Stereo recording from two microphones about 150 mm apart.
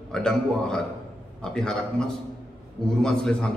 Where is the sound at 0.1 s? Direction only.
5° left (ahead or behind).